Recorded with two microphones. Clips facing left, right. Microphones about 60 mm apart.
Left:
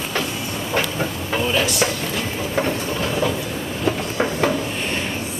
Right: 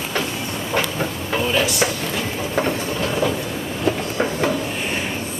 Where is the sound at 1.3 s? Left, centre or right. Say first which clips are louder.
Even; centre.